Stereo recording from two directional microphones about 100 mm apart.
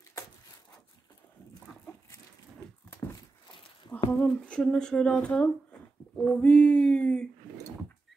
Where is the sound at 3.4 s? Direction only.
55° left (ahead or behind).